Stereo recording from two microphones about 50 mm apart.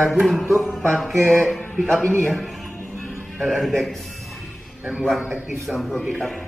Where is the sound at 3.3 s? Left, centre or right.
Centre.